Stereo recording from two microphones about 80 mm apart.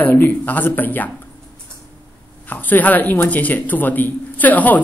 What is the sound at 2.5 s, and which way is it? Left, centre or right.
A man's voice, left.